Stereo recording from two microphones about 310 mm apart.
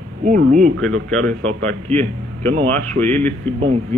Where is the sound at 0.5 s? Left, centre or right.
Right.